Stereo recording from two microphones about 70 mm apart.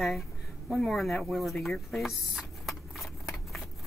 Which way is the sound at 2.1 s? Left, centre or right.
Centre.